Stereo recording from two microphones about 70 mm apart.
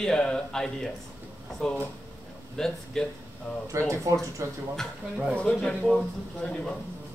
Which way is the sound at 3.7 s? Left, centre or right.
Right.